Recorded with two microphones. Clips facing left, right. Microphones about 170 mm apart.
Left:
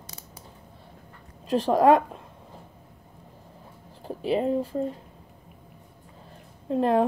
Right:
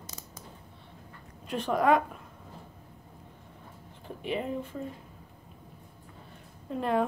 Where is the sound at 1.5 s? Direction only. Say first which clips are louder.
Left 6 dB; 35° left (ahead or behind).